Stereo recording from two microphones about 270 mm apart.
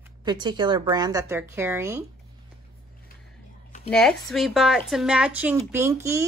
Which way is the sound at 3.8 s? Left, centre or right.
Centre.